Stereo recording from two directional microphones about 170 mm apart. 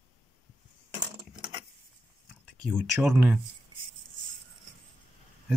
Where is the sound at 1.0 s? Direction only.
25° right (ahead or behind).